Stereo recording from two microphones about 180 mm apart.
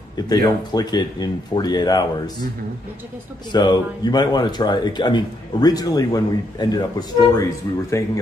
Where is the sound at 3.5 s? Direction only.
25° left (ahead or behind).